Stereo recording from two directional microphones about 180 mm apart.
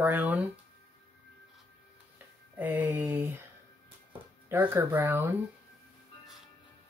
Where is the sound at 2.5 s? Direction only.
10° right (ahead or behind).